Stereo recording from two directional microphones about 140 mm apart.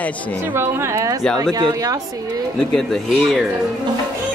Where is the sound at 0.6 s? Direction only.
20° right (ahead or behind).